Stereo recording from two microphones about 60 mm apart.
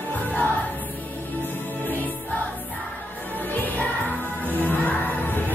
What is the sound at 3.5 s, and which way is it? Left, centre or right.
Music, left.